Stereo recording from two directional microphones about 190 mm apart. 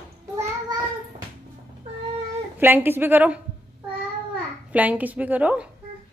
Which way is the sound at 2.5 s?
10° right (ahead or behind).